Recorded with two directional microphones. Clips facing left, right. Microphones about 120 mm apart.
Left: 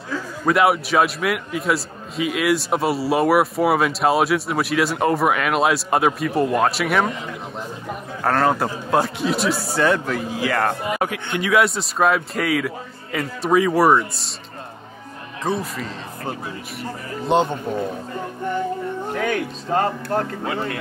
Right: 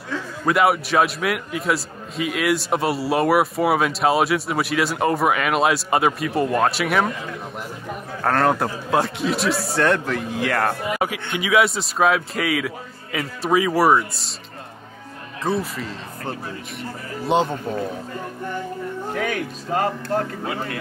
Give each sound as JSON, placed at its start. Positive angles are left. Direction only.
{"t": 0.1, "sound": "a man's voice", "side_deg": 0}
{"t": 8.2, "sound": "a man's voice", "side_deg": 0}
{"t": 15.4, "sound": "a man's voice", "side_deg": 0}
{"t": 17.3, "sound": "a man's voice", "side_deg": 0}
{"t": 19.1, "sound": "speech", "side_deg": 35}